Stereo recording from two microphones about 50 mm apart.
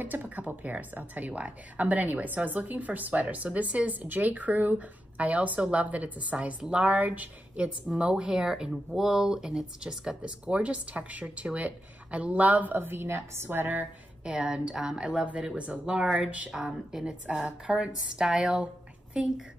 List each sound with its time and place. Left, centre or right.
0.0 s a woman's voice: right; by 10.1 s centre
10.2 s speech: right
13.0 s speech: right
14.2 s speech: centre
16.5 s speech: centre